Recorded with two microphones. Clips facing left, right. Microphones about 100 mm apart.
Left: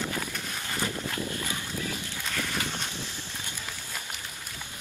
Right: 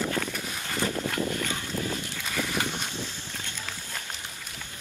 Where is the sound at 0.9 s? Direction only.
70° right (ahead or behind).